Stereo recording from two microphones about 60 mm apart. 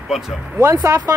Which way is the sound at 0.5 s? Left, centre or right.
Right.